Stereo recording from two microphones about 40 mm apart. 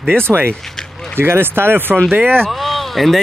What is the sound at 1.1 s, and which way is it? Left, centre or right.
Speech, right.